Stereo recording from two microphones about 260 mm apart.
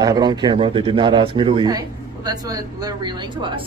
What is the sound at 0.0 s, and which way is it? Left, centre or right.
Speech, centre.